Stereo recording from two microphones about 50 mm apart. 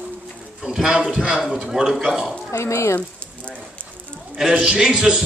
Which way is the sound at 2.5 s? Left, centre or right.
Left.